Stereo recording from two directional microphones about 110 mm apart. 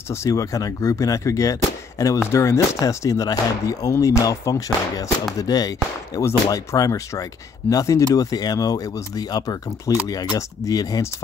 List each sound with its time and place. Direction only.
0.1 s speech: 30° left (ahead or behind)